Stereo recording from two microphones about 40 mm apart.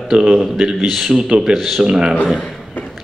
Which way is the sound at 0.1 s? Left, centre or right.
Centre.